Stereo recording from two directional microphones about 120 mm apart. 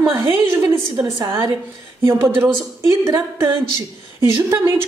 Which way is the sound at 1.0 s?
20° right (ahead or behind).